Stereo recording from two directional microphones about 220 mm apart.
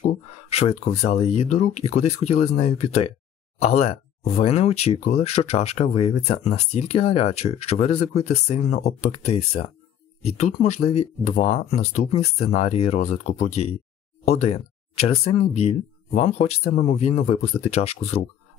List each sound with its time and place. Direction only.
0.0 s speech: 30° left (ahead or behind)